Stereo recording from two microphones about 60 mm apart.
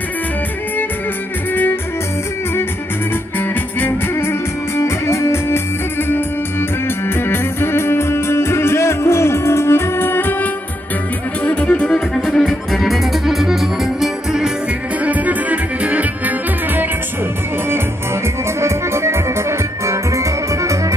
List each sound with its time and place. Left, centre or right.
1.5 s music: left
3.3 s music: left
7.2 s music: left
11.4 s music: left
12.4 s music: centre
15.0 s music: right
18.6 s accordion: right
19.9 s music: right